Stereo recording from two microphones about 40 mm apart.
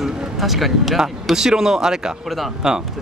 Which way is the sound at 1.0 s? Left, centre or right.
Centre.